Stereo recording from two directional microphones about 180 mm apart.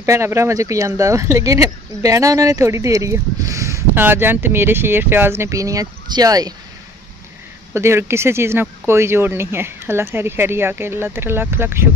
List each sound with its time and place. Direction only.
0.0 s speech: 15° right (ahead or behind)
7.7 s speech: 15° right (ahead or behind)